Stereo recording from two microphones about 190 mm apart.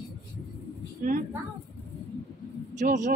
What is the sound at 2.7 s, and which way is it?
Speech, 40° right (ahead or behind).